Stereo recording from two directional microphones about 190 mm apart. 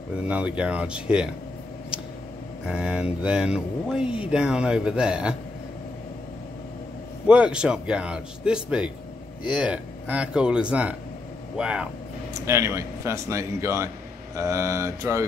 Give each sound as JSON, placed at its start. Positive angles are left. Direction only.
{"t": 0.3, "sound": "speech", "side_deg": -5}
{"t": 2.6, "sound": "speech", "side_deg": -5}
{"t": 7.2, "sound": "a man's voice", "side_deg": -5}